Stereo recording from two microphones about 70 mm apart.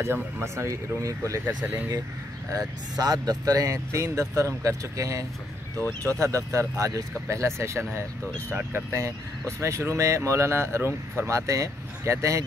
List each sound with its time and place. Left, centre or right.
0.0 s speech: right
3.0 s speech: right
3.9 s speech: right
11.2 s speech: right